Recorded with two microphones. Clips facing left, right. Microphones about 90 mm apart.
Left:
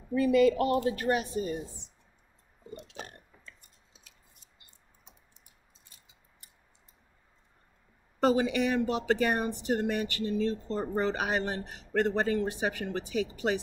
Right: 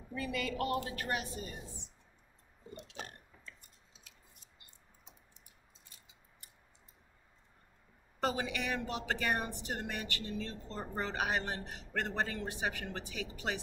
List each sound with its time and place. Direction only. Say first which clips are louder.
0.1 s speech: left 15 dB; 25° left (ahead or behind)
8.2 s speech: left 10 dB; 20° left (ahead or behind)